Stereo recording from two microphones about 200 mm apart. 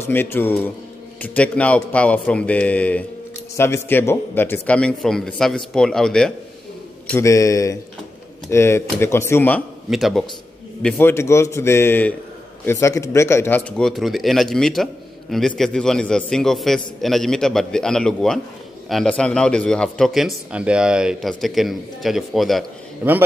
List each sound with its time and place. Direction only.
0.0 s speech: 10° left (ahead or behind)
7.1 s speech: 15° left (ahead or behind)
9.8 s speech: centre (ahead or behind)